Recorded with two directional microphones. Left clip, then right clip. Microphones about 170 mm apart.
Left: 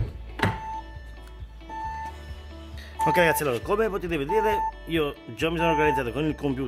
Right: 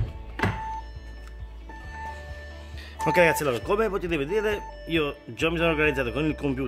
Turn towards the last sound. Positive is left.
turn(degrees=0)  # may be behind; listen again after turning